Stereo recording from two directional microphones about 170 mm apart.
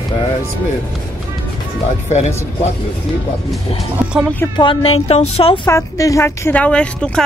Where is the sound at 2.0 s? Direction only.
40° left (ahead or behind).